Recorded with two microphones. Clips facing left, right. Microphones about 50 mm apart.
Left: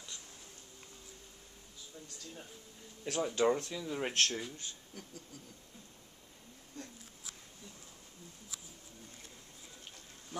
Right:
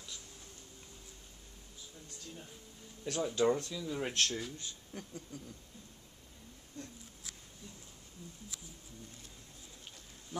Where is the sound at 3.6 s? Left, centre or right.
Left.